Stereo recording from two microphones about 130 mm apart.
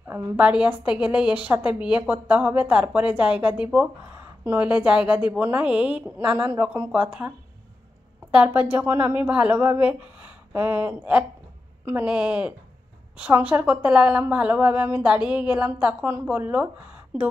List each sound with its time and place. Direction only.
0.0 s a woman's voice: 20° right (ahead or behind)
0.5 s a woman's voice: 10° right (ahead or behind)